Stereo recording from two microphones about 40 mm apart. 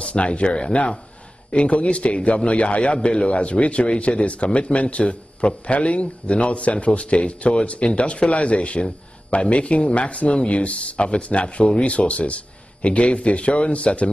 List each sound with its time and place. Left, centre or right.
0.0 s a man's voice: left